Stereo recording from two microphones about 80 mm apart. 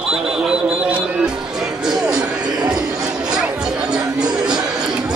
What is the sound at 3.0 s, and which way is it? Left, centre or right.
Music, centre.